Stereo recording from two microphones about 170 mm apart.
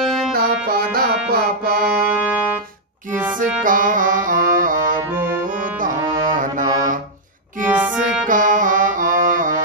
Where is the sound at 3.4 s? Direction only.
50° right (ahead or behind).